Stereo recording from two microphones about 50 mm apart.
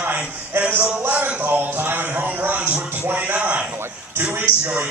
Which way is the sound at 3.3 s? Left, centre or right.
Right.